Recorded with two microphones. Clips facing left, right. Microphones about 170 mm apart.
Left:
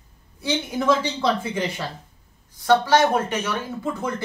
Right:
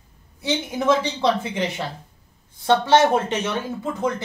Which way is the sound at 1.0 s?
20° right (ahead or behind).